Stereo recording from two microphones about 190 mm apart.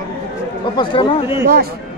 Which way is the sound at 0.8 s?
25° left (ahead or behind).